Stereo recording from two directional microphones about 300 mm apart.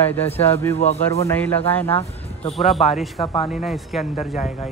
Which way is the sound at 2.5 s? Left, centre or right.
Centre.